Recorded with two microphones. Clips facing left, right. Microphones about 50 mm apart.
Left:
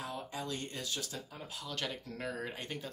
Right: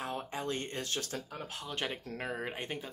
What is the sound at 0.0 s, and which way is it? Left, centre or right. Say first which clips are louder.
Speech: right 3 dB; right.